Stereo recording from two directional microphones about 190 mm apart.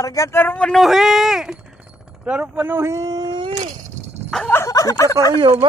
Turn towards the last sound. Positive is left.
turn(degrees=-25)  # may be behind; listen again after turning